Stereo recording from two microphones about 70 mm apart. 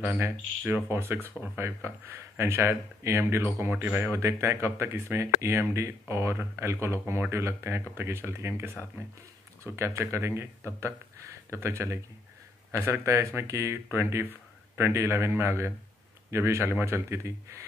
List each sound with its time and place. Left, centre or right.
0.2 s speech: right
4.1 s speech: right
9.8 s speech: right
13.8 s speech: right